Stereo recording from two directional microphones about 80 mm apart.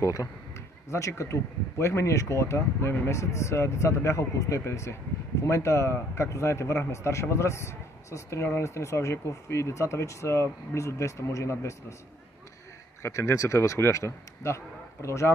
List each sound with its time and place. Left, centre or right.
0.0 s speech: left
13.0 s speech: left